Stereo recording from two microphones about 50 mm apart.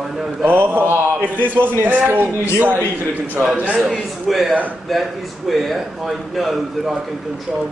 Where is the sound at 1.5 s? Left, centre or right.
Right.